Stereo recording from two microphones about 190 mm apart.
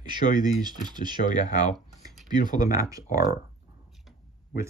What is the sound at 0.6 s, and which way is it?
Speech, 20° right (ahead or behind).